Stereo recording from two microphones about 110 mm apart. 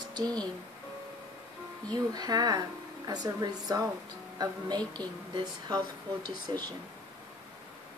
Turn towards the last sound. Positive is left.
turn(degrees=-40)  # may be behind; listen again after turning